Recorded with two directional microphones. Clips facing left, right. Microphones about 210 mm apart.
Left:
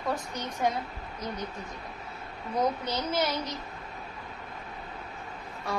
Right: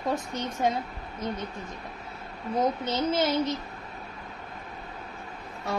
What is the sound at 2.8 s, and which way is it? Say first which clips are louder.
Speech: right 4 dB; 25° right (ahead or behind).